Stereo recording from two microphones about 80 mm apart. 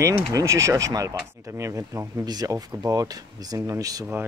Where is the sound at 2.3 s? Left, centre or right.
Right.